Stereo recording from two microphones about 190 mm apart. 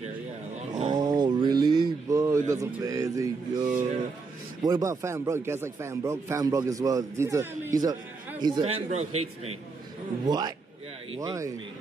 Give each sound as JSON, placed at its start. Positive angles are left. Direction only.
{"t": 0.6, "sound": "a sound", "side_deg": -35}
{"t": 0.9, "sound": "mantra", "side_deg": -20}
{"t": 2.5, "sound": "speech", "side_deg": -15}
{"t": 4.6, "sound": "a man's voice", "side_deg": -15}
{"t": 8.6, "sound": "a man's voice", "side_deg": -35}
{"t": 10.2, "sound": "a man's voice", "side_deg": -20}